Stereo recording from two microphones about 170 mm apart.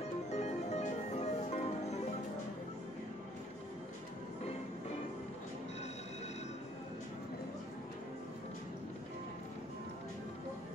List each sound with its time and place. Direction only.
0.0 s music: 40° left (ahead or behind)